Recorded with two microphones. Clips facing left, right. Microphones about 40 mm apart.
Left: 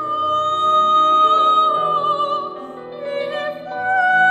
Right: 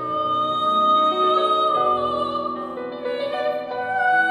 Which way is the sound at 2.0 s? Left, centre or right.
Left.